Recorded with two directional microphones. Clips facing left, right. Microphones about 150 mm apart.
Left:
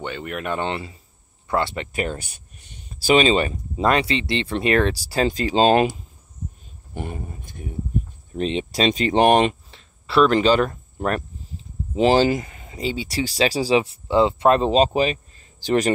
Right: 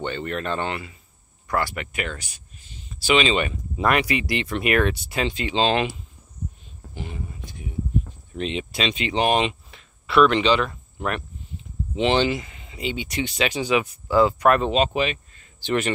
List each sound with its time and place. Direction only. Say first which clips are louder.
0.0 s speech: right 1 dB; 5° left (ahead or behind)
0.7 s speech: left 3 dB; 30° left (ahead or behind)
2.9 s speech: left 4 dB; 40° left (ahead or behind)
8.3 s speech: left 7 dB; 35° left (ahead or behind); by 9.6 s 50° left (ahead or behind)
9.7 s speech: right 1 dB; 30° left (ahead or behind)